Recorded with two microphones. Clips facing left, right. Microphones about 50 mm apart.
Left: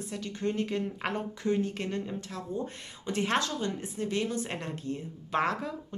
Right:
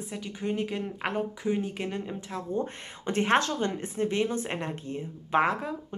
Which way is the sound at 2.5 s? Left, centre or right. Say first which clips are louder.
Right 4 dB; right.